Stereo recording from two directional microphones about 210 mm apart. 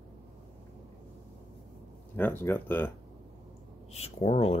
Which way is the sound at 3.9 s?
30° left (ahead or behind).